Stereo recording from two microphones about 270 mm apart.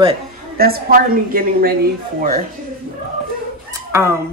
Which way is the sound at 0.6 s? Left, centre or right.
Right.